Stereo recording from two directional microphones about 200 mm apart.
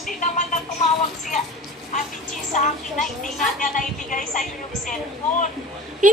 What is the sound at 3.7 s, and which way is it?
Speech, 40° left (ahead or behind).